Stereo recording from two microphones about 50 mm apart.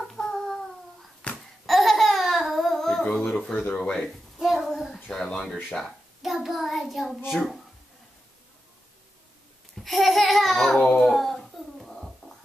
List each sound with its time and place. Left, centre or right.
0.1 s a sound: centre
1.2 s babbling: left
1.7 s babbling: centre
3.3 s a sound: centre
3.7 s speech: centre
4.4 s child singing: centre
5.1 s speech: centre
5.9 s a child's voice: centre
9.8 s a child's voice: centre
11.0 s a sound: centre